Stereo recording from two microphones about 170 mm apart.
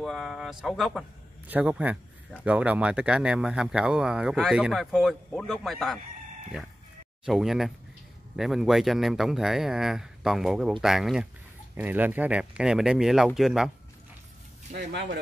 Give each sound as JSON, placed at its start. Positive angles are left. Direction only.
{"t": 0.0, "sound": "speech", "side_deg": 0}
{"t": 7.2, "sound": "speech", "side_deg": 0}
{"t": 14.8, "sound": "speech", "side_deg": -90}